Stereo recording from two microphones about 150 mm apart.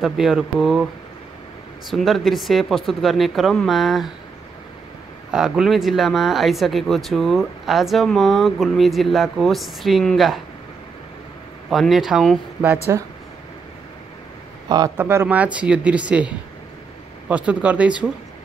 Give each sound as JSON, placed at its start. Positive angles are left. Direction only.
{"t": 0.0, "sound": "speech", "side_deg": -5}
{"t": 1.9, "sound": "speech", "side_deg": 0}
{"t": 5.3, "sound": "speech", "side_deg": -5}
{"t": 11.7, "sound": "speech", "side_deg": 0}
{"t": 12.9, "sound": "speech", "side_deg": -20}
{"t": 15.0, "sound": "speech", "side_deg": -15}